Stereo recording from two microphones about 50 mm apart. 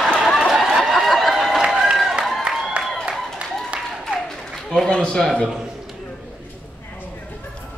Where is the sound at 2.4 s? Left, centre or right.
Centre.